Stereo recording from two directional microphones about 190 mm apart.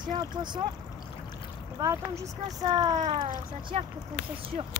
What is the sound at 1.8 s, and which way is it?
Speech, 15° right (ahead or behind).